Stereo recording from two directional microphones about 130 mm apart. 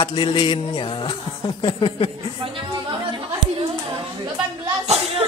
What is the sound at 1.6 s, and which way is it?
Speech, 40° left (ahead or behind).